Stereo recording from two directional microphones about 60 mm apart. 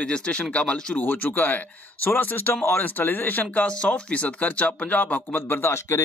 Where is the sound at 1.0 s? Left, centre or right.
Left.